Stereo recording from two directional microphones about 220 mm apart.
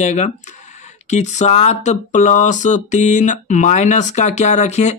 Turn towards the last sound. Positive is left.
turn(degrees=30)  # may be behind; listen again after turning